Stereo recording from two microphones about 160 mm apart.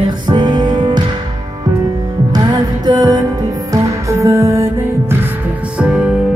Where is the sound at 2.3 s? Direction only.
25° right (ahead or behind).